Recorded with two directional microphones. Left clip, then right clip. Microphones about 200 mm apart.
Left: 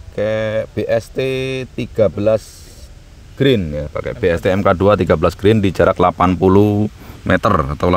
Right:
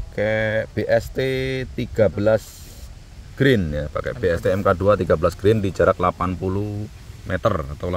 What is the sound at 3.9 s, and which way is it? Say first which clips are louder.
Speech: left 5 dB; 25° left (ahead or behind).